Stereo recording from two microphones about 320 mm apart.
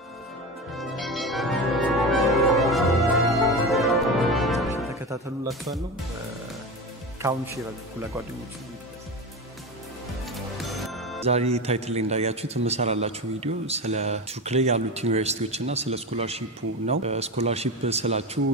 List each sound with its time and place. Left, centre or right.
0.7 s music: centre
7.2 s a man's voice: centre
10.6 s music: centre
11.2 s a man's voice: centre